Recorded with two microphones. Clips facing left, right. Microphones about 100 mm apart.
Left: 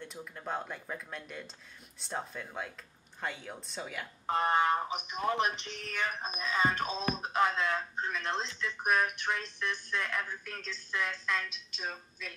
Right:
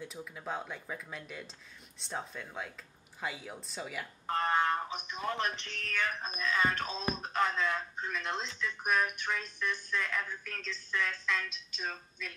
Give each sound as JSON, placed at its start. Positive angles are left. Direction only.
{"t": 0.0, "sound": "speech", "side_deg": 0}
{"t": 4.3, "sound": "speech", "side_deg": 20}